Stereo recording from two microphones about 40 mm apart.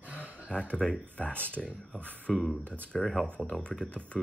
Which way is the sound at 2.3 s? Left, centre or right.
Centre.